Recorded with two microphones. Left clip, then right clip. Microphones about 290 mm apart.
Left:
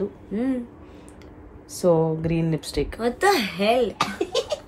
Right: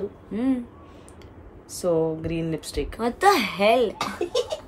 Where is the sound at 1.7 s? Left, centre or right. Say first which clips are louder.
Left 3 dB; centre.